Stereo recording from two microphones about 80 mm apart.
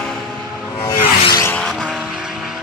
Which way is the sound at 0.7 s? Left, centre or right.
Left.